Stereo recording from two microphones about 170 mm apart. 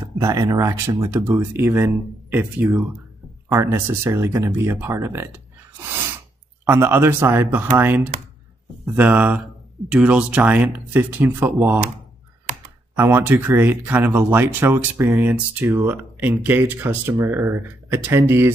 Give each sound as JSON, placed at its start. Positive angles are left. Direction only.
{"t": 0.2, "sound": "speech", "side_deg": -20}
{"t": 3.4, "sound": "speech", "side_deg": -15}
{"t": 6.6, "sound": "speech", "side_deg": -15}
{"t": 12.9, "sound": "speech", "side_deg": -10}